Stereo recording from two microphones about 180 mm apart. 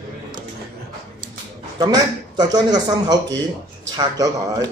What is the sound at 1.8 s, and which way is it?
A man's voice, 20° right (ahead or behind).